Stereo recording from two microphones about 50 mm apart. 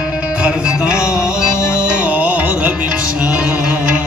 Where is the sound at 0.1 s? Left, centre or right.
Right.